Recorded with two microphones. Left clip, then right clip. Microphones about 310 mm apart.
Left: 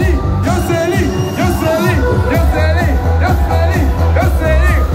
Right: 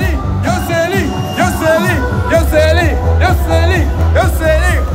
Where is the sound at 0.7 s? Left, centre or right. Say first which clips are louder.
Right 1 dB; centre.